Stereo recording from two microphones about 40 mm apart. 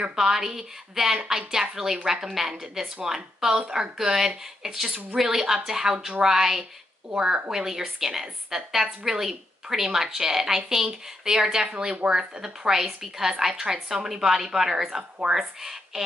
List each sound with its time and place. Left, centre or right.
0.1 s a woman's voice: centre
15.0 s speech: right
15.3 s a woman's voice: centre